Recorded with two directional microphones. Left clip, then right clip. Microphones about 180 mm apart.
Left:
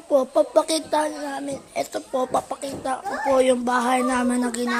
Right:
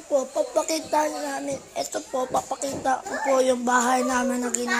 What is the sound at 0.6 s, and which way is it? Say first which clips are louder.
Speech: left 2 dB; 40° left (ahead or behind).